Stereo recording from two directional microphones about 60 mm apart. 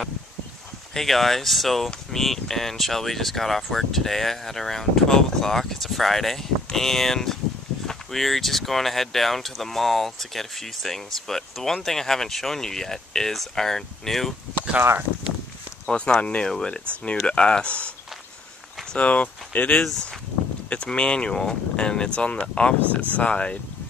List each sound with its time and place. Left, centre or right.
0.9 s speech: centre
15.9 s speech: centre
18.9 s speech: left
19.7 s speech: centre